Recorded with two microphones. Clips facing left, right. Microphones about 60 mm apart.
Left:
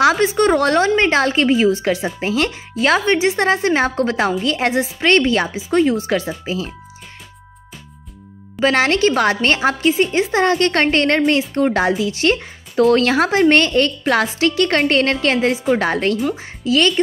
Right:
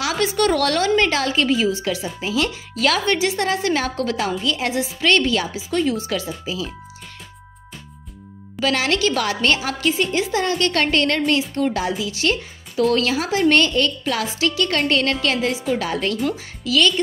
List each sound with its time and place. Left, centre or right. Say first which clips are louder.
0.2 s speech: left 4 dB; left
2.8 s speech: left 4 dB; left
8.5 s a woman's voice: left 5 dB; left